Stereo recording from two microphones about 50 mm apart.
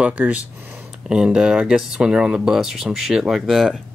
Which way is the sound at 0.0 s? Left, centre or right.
Right.